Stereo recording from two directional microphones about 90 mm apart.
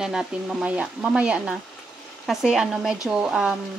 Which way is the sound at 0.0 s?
5° right (ahead or behind).